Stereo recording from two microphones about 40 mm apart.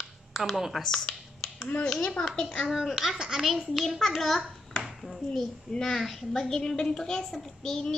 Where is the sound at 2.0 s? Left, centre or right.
Left.